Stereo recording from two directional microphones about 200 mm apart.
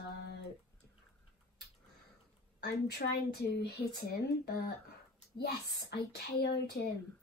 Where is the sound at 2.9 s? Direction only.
55° left (ahead or behind).